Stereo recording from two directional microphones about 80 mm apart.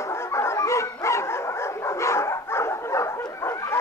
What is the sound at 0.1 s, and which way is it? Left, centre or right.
Dog, left.